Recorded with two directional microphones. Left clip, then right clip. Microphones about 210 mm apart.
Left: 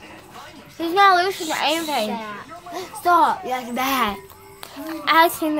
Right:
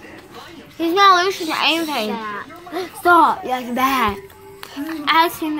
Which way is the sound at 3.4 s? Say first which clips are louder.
Right 3 dB; 10° right (ahead or behind).